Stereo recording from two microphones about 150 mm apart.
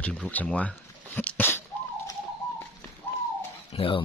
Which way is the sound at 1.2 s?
10° left (ahead or behind).